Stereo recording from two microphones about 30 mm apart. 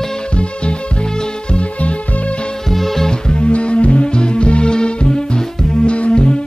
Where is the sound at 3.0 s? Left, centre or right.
Left.